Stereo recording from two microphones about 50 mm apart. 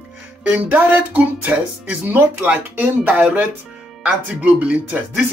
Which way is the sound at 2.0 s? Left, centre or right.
Right.